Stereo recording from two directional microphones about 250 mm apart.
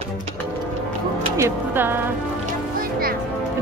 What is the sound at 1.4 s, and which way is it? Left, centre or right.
Speech, centre.